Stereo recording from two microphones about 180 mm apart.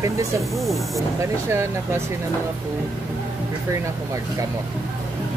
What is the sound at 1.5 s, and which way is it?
Speech, 15° right (ahead or behind).